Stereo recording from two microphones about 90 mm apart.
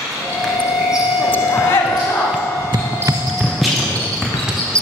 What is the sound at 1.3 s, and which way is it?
Basketball bounce, 25° left (ahead or behind).